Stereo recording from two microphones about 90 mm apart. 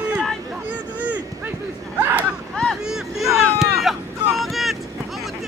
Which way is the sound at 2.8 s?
5° right (ahead or behind).